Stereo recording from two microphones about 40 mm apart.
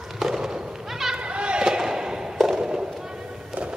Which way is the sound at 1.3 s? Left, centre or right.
Right.